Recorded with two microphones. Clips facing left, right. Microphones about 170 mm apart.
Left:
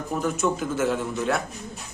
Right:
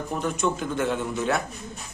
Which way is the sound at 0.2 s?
5° left (ahead or behind).